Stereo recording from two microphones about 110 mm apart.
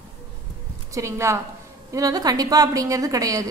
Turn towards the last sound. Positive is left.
turn(degrees=-30)  # may be behind; listen again after turning